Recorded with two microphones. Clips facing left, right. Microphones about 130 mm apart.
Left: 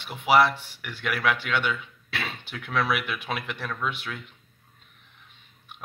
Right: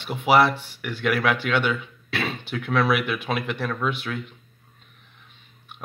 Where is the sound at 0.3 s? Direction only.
Centre (ahead or behind).